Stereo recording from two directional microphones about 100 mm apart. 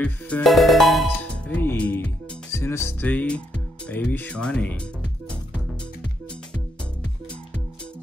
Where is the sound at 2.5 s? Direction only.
25° left (ahead or behind).